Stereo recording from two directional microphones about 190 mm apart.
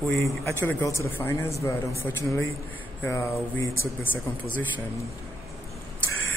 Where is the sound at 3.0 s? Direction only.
15° left (ahead or behind).